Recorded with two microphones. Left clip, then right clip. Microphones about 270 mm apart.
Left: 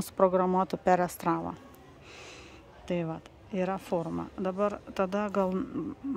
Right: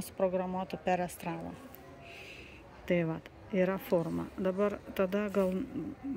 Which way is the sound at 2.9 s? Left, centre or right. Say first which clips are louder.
Right 2 dB; centre.